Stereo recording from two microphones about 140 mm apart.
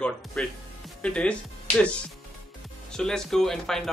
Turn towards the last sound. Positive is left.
turn(degrees=0)  # may be behind; listen again after turning